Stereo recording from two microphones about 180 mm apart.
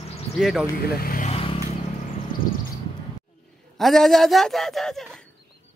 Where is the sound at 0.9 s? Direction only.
55° left (ahead or behind).